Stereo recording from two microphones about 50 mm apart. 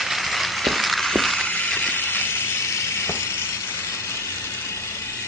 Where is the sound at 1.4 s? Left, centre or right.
Left.